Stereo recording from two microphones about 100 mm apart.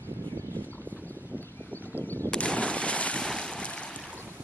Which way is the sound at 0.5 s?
20° left (ahead or behind).